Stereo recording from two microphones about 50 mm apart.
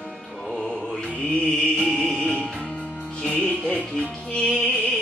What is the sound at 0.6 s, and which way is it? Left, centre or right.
Mantra, centre.